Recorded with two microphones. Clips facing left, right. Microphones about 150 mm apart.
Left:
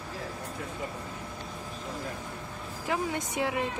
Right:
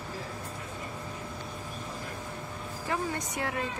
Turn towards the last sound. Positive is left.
turn(degrees=20)  # may be behind; listen again after turning